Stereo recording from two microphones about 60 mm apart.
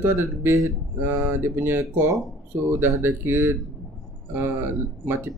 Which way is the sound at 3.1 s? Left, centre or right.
Right.